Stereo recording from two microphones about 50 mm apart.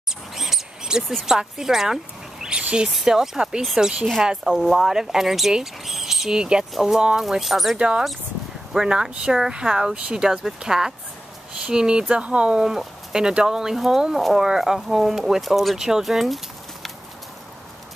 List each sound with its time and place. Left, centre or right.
0.3 s mouse: centre
1.2 s speech: centre
7.7 s speech: centre